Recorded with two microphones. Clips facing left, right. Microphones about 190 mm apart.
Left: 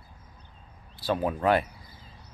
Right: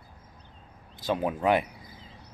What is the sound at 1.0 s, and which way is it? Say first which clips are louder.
Speech: left 1 dB; 15° right (ahead or behind).